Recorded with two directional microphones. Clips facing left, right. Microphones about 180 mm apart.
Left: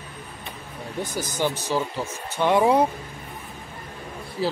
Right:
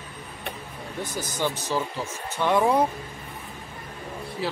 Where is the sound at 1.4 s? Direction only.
15° left (ahead or behind).